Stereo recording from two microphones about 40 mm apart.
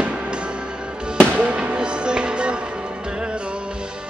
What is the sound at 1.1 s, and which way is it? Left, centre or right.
Music, right.